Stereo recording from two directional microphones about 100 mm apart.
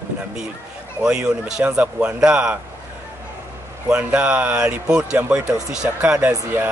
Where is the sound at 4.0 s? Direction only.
15° right (ahead or behind).